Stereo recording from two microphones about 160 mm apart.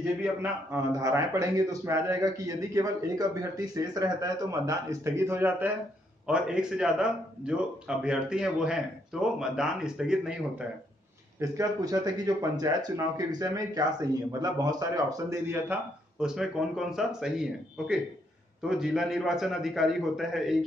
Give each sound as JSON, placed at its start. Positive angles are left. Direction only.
{"t": 0.9, "sound": "a man's voice", "side_deg": -20}
{"t": 11.3, "sound": "a man's voice", "side_deg": -20}
{"t": 16.2, "sound": "speech", "side_deg": -5}